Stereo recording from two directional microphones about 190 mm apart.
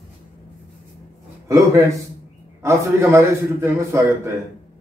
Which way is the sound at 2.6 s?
15° right (ahead or behind).